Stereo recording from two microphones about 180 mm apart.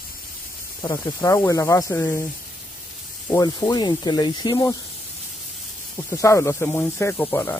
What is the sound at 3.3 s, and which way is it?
Speech, 20° left (ahead or behind).